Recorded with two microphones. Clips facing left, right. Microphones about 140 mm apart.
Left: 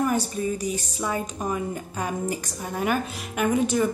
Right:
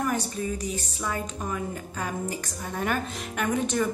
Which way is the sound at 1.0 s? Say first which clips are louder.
Left 4 dB; 15° left (ahead or behind).